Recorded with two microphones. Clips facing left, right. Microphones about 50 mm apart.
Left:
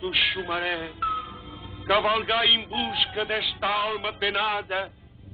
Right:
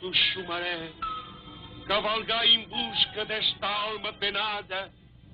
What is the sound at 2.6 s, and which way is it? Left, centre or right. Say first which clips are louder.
Speech: left 3 dB; centre.